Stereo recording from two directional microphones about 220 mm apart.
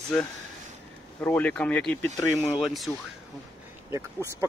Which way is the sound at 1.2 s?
5° left (ahead or behind).